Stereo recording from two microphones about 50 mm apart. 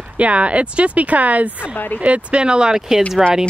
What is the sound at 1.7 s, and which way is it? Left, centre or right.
Speech, left.